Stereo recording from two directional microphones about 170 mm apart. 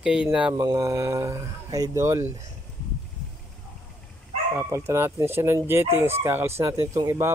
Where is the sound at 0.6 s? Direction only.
20° right (ahead or behind).